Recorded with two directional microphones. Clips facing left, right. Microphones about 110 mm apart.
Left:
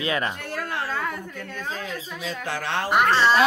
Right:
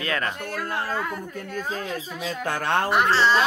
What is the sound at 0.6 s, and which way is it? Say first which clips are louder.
Speech: right 1 dB; 45° right (ahead or behind).